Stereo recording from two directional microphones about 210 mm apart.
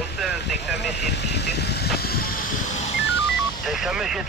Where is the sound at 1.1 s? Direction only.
55° left (ahead or behind).